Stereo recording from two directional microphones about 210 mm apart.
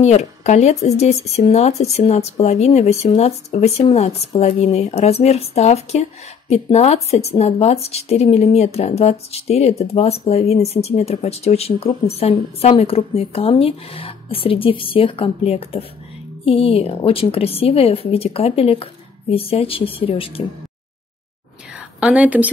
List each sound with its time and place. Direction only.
0.0 s a woman's voice: 35° left (ahead or behind)
21.7 s a woman's voice: 5° right (ahead or behind)